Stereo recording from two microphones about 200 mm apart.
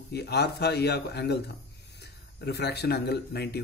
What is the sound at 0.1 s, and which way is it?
Speech, 55° left (ahead or behind).